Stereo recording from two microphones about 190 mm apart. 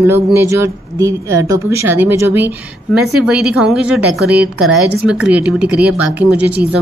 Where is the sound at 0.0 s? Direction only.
15° right (ahead or behind).